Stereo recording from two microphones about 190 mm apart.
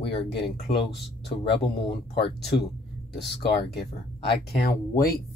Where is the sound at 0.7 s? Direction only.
60° left (ahead or behind).